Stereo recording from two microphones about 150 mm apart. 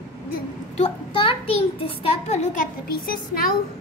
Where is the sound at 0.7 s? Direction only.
40° left (ahead or behind).